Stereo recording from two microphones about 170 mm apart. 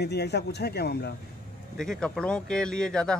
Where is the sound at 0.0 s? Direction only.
75° left (ahead or behind).